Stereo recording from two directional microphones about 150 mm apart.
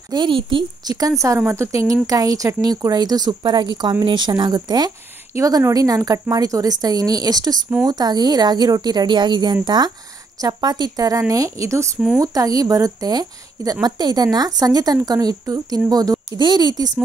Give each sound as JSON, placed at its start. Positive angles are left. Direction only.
{"t": 0.1, "sound": "a woman's voice", "side_deg": -30}